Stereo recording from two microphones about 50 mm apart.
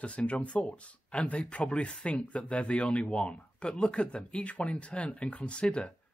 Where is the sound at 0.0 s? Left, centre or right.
Left.